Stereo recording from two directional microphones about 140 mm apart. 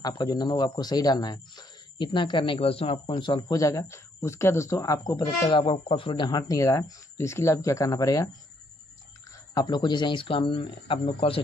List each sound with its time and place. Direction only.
0.0 s speech: 30° left (ahead or behind)
5.2 s speech: 35° left (ahead or behind)
9.5 s speech: 30° left (ahead or behind)